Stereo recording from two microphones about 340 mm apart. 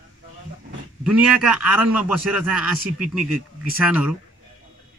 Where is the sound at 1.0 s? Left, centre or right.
Centre.